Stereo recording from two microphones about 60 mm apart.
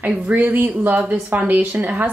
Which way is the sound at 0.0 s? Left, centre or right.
Right.